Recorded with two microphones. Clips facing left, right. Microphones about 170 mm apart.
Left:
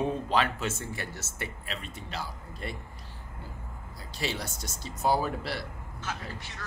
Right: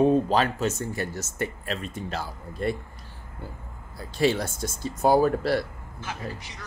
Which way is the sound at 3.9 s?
55° right (ahead or behind).